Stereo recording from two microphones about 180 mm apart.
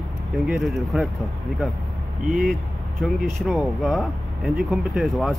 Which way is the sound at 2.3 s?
Centre (ahead or behind).